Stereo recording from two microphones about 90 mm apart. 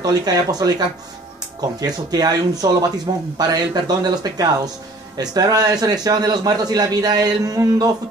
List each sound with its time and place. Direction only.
0.0 s a man's voice: 45° right (ahead or behind)